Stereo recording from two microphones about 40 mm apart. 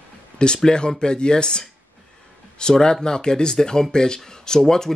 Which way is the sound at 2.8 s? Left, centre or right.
Centre.